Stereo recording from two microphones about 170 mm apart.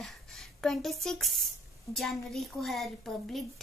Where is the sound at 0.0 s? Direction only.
Centre (ahead or behind).